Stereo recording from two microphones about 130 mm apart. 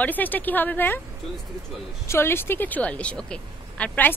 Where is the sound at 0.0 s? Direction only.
15° left (ahead or behind).